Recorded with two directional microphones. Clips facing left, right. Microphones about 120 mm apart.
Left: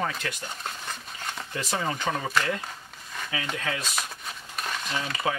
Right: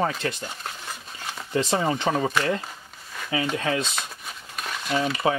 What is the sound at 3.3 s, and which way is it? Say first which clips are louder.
Speech: right 7 dB; 25° right (ahead or behind).